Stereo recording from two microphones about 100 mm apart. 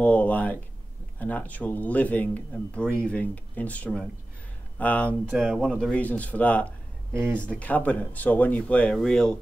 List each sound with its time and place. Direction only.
0.0 s a sound: 15° left (ahead or behind)
1.2 s speech: 15° left (ahead or behind)
5.3 s speech: 5° left (ahead or behind)
7.2 s speech: 20° right (ahead or behind)
7.4 s speech: 15° left (ahead or behind)